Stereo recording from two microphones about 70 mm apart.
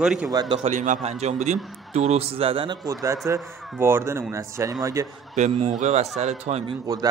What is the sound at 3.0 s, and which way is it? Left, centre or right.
Speech, right.